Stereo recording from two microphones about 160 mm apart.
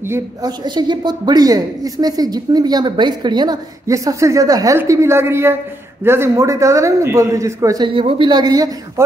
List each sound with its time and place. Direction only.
0.1 s a woman's voice: 25° right (ahead or behind)
7.9 s a woman's voice: 35° right (ahead or behind)